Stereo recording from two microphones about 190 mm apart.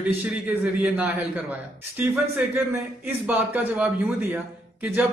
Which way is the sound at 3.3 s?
10° right (ahead or behind).